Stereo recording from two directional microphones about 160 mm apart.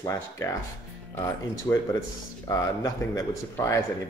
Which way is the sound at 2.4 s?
20° left (ahead or behind).